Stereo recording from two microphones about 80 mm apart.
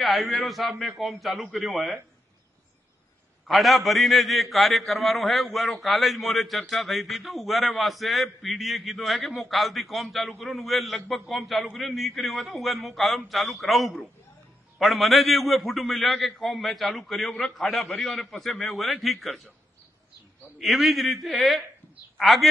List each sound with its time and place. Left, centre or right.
0.0 s a man's voice: centre
3.4 s a man's voice: centre
20.5 s a man's voice: centre